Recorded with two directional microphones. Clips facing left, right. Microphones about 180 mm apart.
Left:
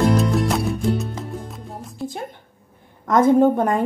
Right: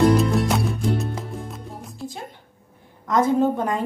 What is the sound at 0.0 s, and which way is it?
Music, centre (ahead or behind).